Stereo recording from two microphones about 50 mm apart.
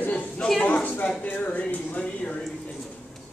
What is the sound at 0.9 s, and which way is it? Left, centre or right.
Speech, left.